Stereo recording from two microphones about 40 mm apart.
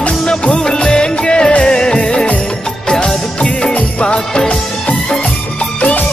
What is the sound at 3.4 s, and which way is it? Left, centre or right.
Music, left.